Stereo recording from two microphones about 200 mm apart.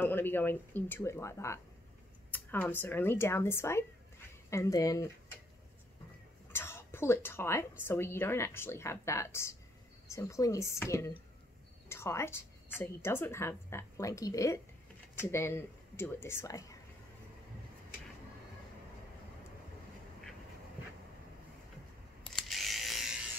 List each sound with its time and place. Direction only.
0.0 s a woman's voice: 10° left (ahead or behind)
6.5 s cough: 10° left (ahead or behind)
7.8 s a woman's voice: 10° left (ahead or behind)
22.3 s electric shaver: centre (ahead or behind)